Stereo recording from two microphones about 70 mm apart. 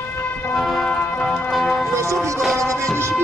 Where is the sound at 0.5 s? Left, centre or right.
Centre.